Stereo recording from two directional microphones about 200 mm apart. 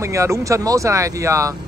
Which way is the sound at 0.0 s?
15° right (ahead or behind).